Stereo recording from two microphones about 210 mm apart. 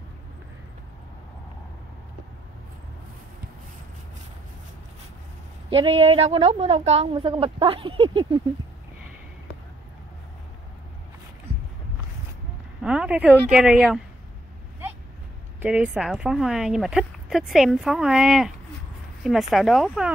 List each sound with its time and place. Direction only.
5.7 s a woman's voice: 25° right (ahead or behind)
12.8 s a sound: 5° right (ahead or behind)
13.5 s a woman's voice: 5° right (ahead or behind)
15.6 s a woman's voice: 5° right (ahead or behind)